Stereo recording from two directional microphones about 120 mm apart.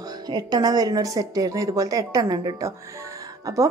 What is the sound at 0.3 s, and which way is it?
Speech, 35° right (ahead or behind).